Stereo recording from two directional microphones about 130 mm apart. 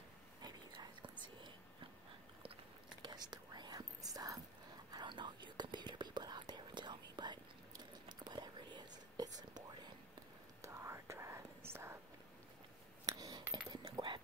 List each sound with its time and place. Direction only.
0.4 s whispering: 35° right (ahead or behind)
3.0 s whispering: 35° right (ahead or behind)
10.6 s whispering: 20° right (ahead or behind)
13.0 s a sound: 30° right (ahead or behind)